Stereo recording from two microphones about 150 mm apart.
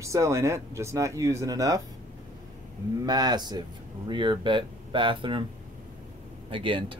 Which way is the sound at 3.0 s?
25° right (ahead or behind).